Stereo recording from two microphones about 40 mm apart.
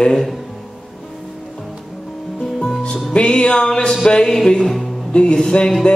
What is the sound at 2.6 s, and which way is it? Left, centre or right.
Music, centre.